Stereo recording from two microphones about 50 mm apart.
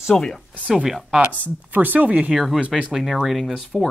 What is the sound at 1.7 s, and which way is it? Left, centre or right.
Speech, right.